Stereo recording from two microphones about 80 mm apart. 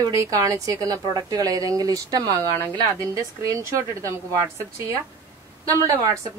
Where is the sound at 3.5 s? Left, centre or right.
Right.